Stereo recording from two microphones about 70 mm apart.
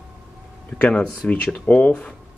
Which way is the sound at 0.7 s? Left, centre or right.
Centre.